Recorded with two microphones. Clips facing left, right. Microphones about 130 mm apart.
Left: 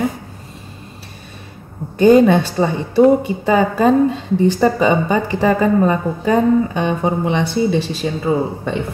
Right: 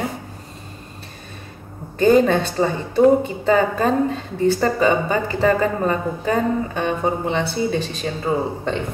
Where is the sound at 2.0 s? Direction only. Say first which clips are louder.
Left 4 dB; 15° left (ahead or behind).